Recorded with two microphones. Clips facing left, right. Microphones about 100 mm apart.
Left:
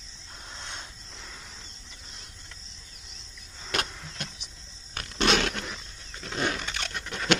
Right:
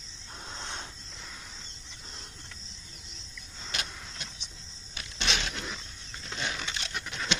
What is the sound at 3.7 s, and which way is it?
Power windows, 55° left (ahead or behind).